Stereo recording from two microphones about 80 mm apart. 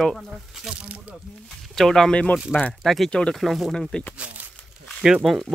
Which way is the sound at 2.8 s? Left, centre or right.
Centre.